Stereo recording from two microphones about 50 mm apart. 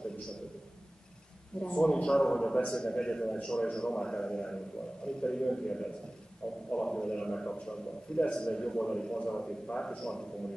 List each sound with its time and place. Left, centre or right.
1.6 s a man's voice: left